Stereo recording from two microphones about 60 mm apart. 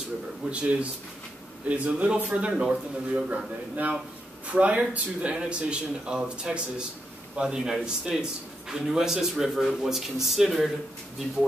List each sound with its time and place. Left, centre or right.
0.5 s speech: right
3.3 s speech: right; by 10.7 s centre